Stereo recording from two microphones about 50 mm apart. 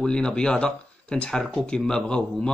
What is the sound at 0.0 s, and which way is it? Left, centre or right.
Speech, centre.